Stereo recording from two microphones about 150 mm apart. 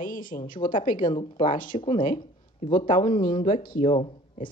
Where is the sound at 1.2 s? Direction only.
35° left (ahead or behind).